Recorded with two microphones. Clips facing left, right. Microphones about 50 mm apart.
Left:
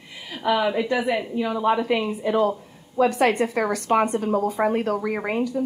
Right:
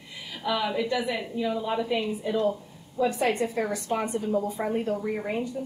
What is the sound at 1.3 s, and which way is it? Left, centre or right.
A woman's voice, left.